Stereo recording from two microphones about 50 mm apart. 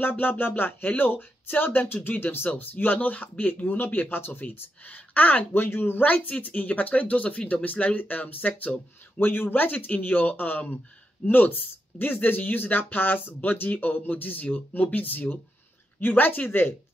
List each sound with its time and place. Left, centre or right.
0.1 s speech: left
6.1 s speech: left